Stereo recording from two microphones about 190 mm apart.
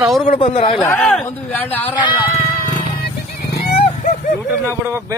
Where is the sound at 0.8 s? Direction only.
10° left (ahead or behind).